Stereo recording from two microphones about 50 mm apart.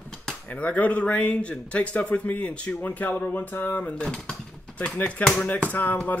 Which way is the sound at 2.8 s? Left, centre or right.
Left.